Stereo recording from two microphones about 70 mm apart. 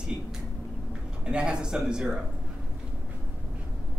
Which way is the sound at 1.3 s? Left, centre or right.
Centre.